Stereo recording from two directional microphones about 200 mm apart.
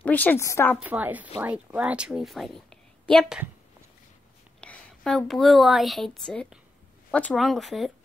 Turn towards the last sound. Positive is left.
turn(degrees=0)  # may be behind; listen again after turning